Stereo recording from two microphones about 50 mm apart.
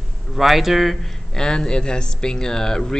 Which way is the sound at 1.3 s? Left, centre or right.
Centre.